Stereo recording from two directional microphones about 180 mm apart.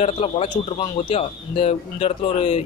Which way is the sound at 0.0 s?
35° left (ahead or behind).